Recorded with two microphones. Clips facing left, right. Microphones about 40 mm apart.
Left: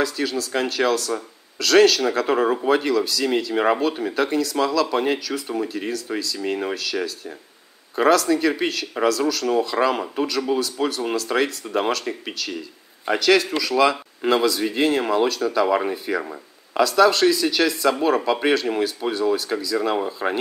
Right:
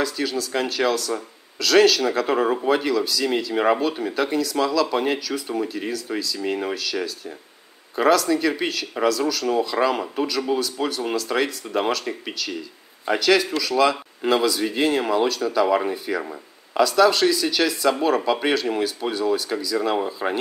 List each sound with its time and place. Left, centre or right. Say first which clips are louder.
0.0 s speech: left 1 dB; centre